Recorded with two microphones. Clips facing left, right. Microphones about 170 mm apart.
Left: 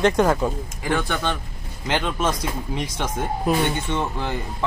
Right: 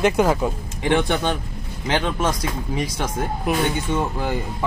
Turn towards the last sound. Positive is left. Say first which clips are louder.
# right 2 dB
turn(degrees=-10)  # may be behind; listen again after turning